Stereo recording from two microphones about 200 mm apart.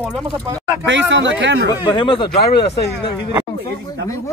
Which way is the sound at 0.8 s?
65° right (ahead or behind).